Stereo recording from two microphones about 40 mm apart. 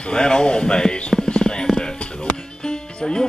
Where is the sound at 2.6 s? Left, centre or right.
Centre.